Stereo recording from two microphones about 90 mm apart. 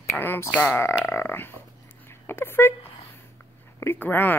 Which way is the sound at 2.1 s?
25° left (ahead or behind).